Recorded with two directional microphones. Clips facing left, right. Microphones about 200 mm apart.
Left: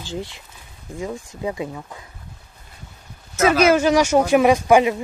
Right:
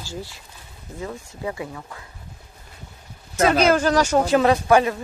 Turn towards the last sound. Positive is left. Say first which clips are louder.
# left 2 dB
turn(degrees=15)  # may be behind; listen again after turning